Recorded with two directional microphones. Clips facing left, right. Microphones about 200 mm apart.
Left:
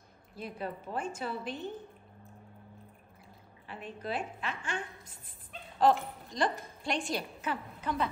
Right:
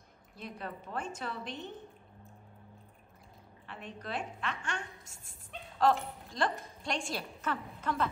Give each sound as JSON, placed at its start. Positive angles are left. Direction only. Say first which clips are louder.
{"t": 0.4, "sound": "a woman's voice", "louder": "left 4 dB", "side_deg": 5}
{"t": 3.7, "sound": "a woman's voice", "louder": "left 3 dB", "side_deg": 5}
{"t": 5.0, "sound": "speech", "louder": "left 1 dB", "side_deg": -45}
{"t": 5.5, "sound": "speech", "louder": "left 2 dB", "side_deg": 0}